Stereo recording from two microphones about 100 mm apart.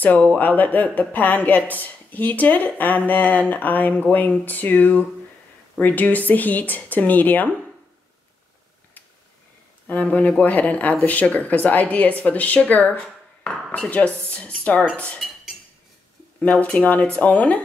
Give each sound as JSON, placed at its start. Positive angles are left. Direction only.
{"t": 0.0, "sound": "speech", "side_deg": 15}
{"t": 9.8, "sound": "speech", "side_deg": 15}
{"t": 16.3, "sound": "speech", "side_deg": 15}